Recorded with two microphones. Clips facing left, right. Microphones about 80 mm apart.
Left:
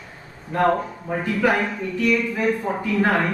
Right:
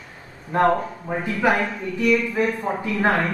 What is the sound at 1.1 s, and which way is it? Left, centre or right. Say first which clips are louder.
Speech: even; centre.